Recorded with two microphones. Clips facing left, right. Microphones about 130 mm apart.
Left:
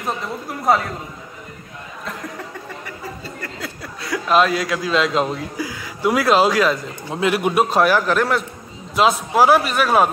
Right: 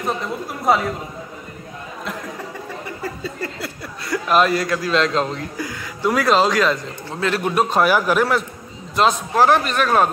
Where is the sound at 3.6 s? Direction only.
Centre (ahead or behind).